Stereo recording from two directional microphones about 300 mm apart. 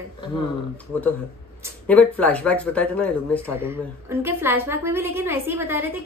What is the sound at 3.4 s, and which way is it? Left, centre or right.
A woman's voice, centre.